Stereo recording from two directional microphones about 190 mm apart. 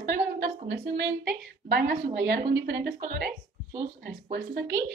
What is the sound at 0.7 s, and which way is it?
Speech, 60° right (ahead or behind).